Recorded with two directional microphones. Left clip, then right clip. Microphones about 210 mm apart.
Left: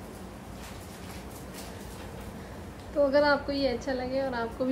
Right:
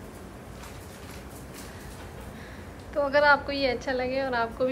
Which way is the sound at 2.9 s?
20° left (ahead or behind).